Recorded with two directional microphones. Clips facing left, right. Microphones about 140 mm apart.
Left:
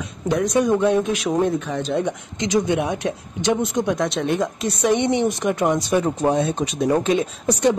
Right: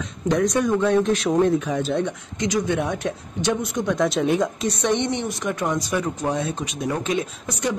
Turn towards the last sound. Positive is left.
turn(degrees=35)  # may be behind; listen again after turning